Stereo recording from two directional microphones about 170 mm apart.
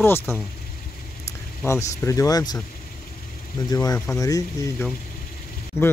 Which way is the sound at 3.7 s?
20° left (ahead or behind).